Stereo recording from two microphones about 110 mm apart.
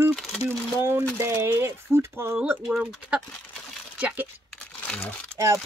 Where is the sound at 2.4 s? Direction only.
10° right (ahead or behind).